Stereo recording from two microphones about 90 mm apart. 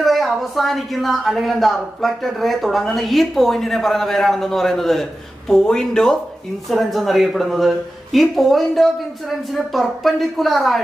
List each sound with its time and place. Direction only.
0.0 s speech: centre (ahead or behind)